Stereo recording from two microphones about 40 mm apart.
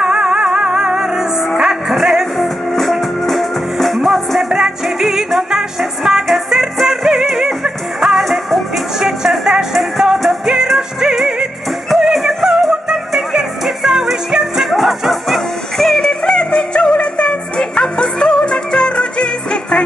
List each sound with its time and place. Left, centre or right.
0.0 s music: centre
6.5 s music: centre
8.2 s music: centre
11.9 s music: centre
16.0 s music: centre